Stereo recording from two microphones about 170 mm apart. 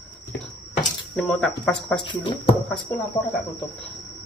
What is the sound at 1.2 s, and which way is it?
Speech, centre (ahead or behind).